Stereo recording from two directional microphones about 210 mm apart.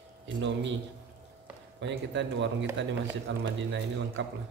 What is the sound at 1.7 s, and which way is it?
A man's voice, 60° right (ahead or behind).